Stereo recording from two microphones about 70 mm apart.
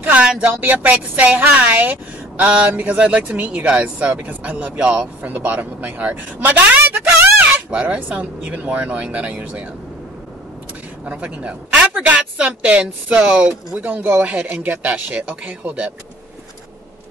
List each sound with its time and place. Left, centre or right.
0.0 s a sound: right
0.3 s speech: centre
11.1 s a woman's voice: centre